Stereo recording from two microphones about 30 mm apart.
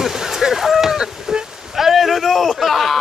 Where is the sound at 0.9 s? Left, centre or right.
Right.